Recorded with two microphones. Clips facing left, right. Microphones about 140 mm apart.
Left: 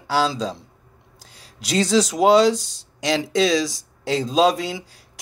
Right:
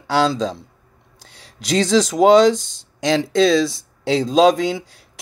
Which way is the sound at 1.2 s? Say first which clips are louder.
Right 3 dB; 75° right (ahead or behind).